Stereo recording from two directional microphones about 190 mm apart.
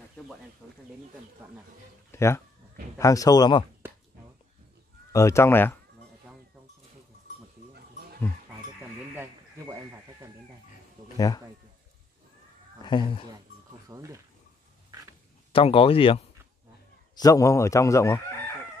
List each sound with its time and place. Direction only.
1.4 s speech: 10° right (ahead or behind)
2.1 s speech: 15° left (ahead or behind)
5.1 s speech: 15° left (ahead or behind)
7.7 s goat: 55° right (ahead or behind)
9.1 s a sound: 10° right (ahead or behind)
11.1 s speech: 20° left (ahead or behind)
12.8 s speech: 25° left (ahead or behind)
13.8 s speech: 15° right (ahead or behind)
15.5 s speech: 30° left (ahead or behind)
17.1 s speech: 20° left (ahead or behind)